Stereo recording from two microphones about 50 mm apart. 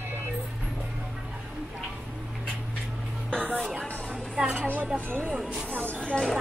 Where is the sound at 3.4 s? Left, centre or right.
Right.